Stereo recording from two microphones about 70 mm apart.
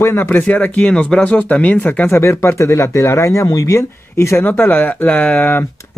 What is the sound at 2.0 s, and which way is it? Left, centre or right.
Speech, left.